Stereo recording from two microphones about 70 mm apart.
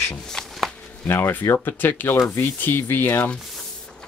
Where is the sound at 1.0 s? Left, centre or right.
Left.